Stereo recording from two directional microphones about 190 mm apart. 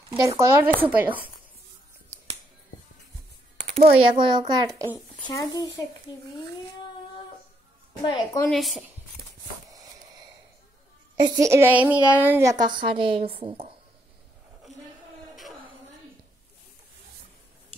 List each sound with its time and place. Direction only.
0.1 s a woman's voice: 15° right (ahead or behind)
3.8 s a child's voice: 25° right (ahead or behind)
5.2 s a woman's voice: 20° left (ahead or behind)
8.0 s a woman's voice: 20° left (ahead or behind)
8.5 s speech: centre (ahead or behind)
9.7 s a sound: 20° right (ahead or behind)
11.1 s a woman's voice: 15° right (ahead or behind)